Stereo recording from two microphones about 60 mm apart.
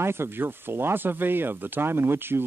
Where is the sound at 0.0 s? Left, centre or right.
Right.